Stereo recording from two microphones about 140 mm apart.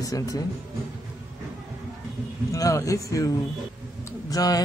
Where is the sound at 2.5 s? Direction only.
25° left (ahead or behind).